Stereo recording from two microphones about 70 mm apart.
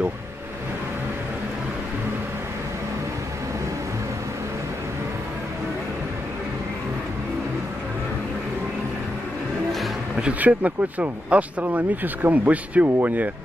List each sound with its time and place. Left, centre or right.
10.2 s speech: right